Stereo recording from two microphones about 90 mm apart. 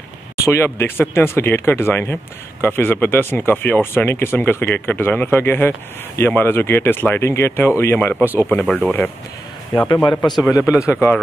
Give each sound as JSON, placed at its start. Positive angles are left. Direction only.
{"t": 0.7, "sound": "speech", "side_deg": 25}
{"t": 8.2, "sound": "speech", "side_deg": -20}
{"t": 8.5, "sound": "speech", "side_deg": 5}
{"t": 10.0, "sound": "speech", "side_deg": 55}
{"t": 10.7, "sound": "speech", "side_deg": 30}